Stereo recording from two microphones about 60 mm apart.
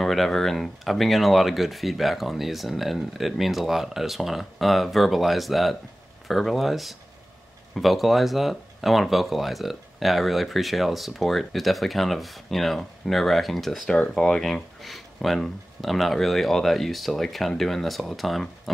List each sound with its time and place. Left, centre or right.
0.0 s speech: centre